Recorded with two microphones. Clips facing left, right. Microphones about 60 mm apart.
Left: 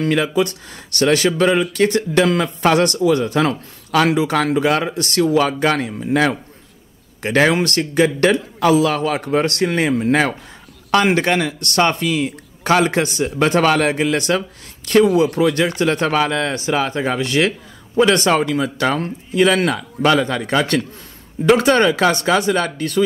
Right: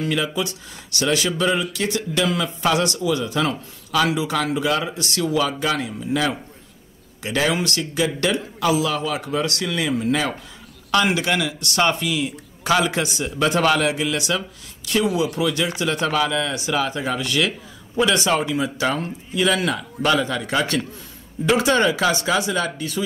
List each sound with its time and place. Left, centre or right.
0.0 s speech: left
20.1 s speech: left